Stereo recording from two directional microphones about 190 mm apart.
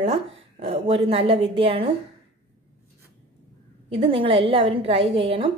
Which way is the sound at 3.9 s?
30° right (ahead or behind).